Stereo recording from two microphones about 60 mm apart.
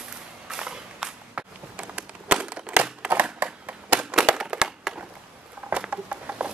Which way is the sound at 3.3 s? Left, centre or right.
Right.